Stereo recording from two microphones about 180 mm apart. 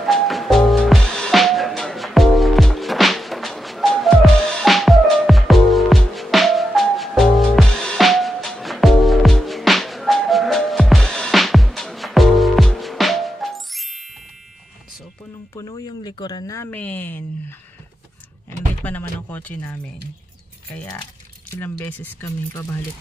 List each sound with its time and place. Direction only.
0.0 s music: centre (ahead or behind)
15.5 s a sound: 20° left (ahead or behind)
18.8 s speech: 10° left (ahead or behind)